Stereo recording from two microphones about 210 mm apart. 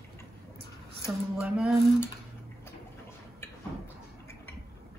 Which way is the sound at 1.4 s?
Centre (ahead or behind).